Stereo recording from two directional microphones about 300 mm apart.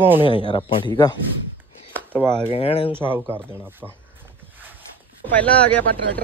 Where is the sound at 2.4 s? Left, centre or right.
Centre.